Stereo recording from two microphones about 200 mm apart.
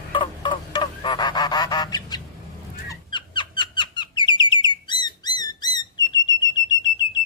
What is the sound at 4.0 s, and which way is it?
Bird, 25° left (ahead or behind).